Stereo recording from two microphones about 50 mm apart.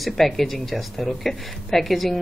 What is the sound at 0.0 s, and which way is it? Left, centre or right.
Speech, centre.